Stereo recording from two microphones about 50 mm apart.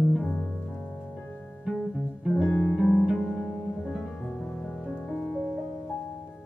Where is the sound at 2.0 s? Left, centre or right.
Centre.